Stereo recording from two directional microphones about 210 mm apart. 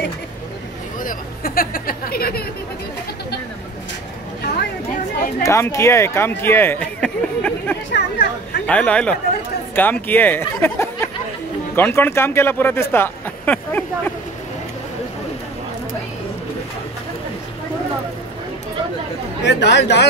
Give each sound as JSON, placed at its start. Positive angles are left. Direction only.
{"t": 0.9, "sound": "speech", "side_deg": 40}
{"t": 5.4, "sound": "speech", "side_deg": 15}
{"t": 7.9, "sound": "speech", "side_deg": 55}
{"t": 8.6, "sound": "speech", "side_deg": 5}
{"t": 19.4, "sound": "speech", "side_deg": 55}